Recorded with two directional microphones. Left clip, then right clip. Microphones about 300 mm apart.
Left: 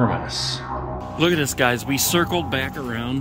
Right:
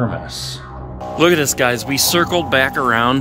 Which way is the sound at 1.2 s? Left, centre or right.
Centre.